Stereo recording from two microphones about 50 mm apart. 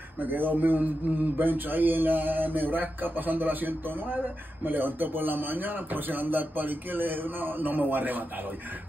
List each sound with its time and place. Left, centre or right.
0.2 s a man's voice: right